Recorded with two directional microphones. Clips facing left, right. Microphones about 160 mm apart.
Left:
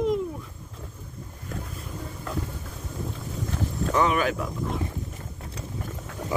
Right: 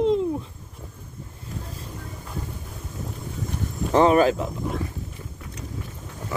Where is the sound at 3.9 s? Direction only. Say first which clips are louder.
Right 7 dB; 35° right (ahead or behind).